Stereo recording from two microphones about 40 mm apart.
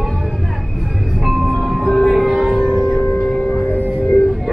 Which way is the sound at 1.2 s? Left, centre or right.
Centre.